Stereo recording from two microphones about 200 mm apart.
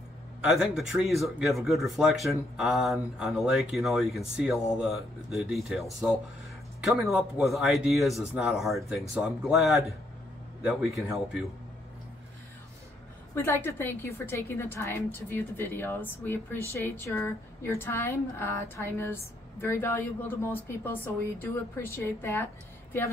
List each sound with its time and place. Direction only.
0.4 s speech: centre (ahead or behind)
11.0 s speech: centre (ahead or behind)
13.3 s a woman's voice: 10° left (ahead or behind)